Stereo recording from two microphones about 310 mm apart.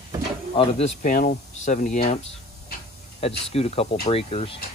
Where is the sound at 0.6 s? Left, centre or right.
Left.